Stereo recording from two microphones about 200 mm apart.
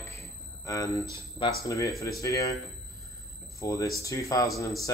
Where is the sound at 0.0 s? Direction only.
15° left (ahead or behind).